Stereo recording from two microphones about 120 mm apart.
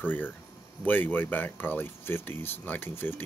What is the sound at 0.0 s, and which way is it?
Speech, 15° left (ahead or behind).